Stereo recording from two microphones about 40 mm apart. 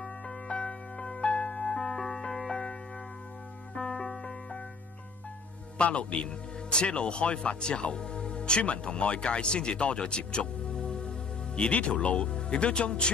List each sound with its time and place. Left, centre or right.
0.5 s music: left
3.7 s music: centre
5.8 s a man's voice: left